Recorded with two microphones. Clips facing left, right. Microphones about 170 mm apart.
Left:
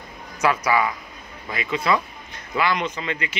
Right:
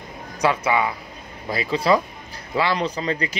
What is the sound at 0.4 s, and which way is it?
Speech, 25° right (ahead or behind).